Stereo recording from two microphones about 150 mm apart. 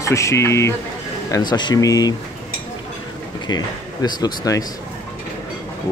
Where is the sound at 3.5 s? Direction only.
30° left (ahead or behind).